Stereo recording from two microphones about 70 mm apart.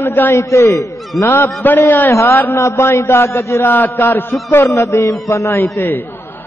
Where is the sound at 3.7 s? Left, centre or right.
Left.